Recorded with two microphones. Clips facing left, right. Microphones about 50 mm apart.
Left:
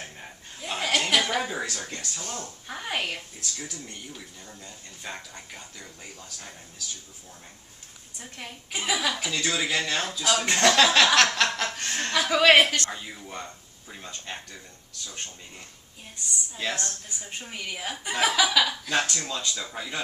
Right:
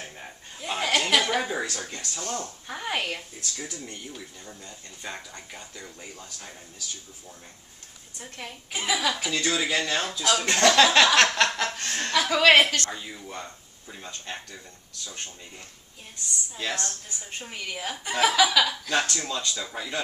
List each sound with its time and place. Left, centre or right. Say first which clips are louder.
0.0 s chuckle: right 1 dB; centre
1.3 s speech: right 1 dB; centre
3.5 s speech: right 2 dB; centre
4.1 s speech: right 2 dB; centre
8.2 s speech: right 1 dB; centre
10.4 s speech: right 1 dB; centre
10.8 s speech: right 1 dB; centre
12.6 s a woman's voice: even; left
12.9 s speech: even; centre
17.5 s speech: right 1 dB; centre